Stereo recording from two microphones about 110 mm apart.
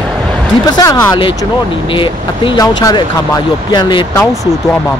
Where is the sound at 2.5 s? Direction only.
35° left (ahead or behind).